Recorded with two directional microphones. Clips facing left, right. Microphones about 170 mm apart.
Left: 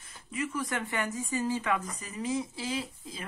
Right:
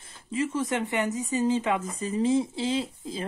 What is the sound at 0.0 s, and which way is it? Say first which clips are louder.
Speech: right 6 dB; 30° right (ahead or behind).